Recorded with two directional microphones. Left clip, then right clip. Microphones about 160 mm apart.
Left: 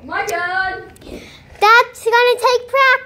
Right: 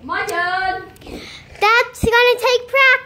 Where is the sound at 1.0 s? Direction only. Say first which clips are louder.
Right 1 dB; centre (ahead or behind).